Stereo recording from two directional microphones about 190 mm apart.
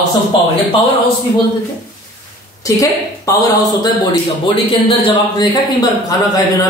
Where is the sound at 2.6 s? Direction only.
15° left (ahead or behind).